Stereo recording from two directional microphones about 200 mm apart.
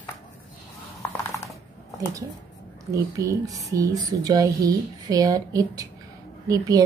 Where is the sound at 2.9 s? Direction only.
15° right (ahead or behind).